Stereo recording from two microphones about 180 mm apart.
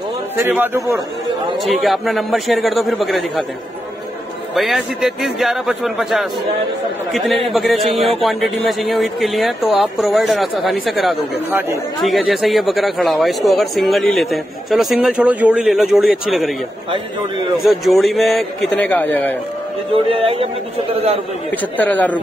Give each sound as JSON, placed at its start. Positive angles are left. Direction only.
{"t": 0.5, "sound": "speech", "side_deg": -10}
{"t": 1.6, "sound": "speech", "side_deg": 0}
{"t": 4.6, "sound": "speech", "side_deg": 0}
{"t": 17.6, "sound": "speech", "side_deg": 0}
{"t": 19.9, "sound": "music", "side_deg": -30}
{"t": 21.5, "sound": "speech", "side_deg": 10}